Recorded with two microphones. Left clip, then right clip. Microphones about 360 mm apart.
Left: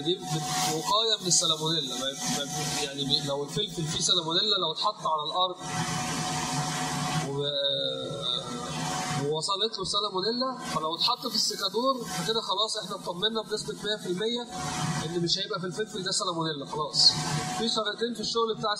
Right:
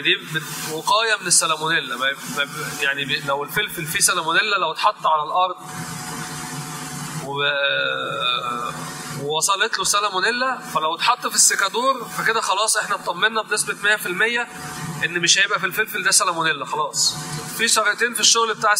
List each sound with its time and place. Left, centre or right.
0.8 s a man's voice: right
7.3 s a man's voice: right
9.3 s a man's voice: right